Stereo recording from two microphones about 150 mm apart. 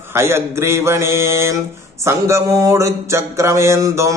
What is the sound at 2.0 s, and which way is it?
Mantra, 20° right (ahead or behind).